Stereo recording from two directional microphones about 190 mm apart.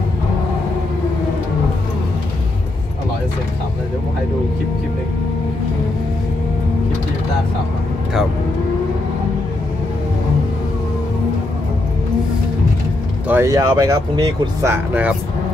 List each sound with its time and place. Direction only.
13.3 s speech: 15° right (ahead or behind)